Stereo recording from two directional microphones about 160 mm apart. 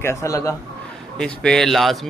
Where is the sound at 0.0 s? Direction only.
20° left (ahead or behind).